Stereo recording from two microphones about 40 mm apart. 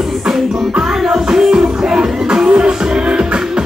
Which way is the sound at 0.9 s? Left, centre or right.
Centre.